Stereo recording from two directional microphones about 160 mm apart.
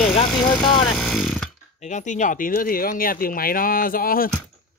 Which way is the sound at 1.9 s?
50° left (ahead or behind).